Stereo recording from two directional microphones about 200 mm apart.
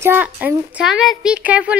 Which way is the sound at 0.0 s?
10° right (ahead or behind).